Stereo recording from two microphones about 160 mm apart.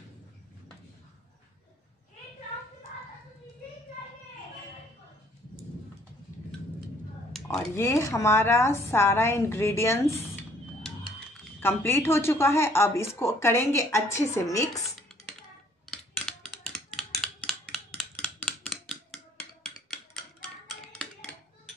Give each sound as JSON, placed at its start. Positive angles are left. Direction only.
{"t": 7.7, "sound": "speech", "side_deg": 15}
{"t": 11.6, "sound": "speech", "side_deg": 15}
{"t": 15.9, "sound": "a sound", "side_deg": 5}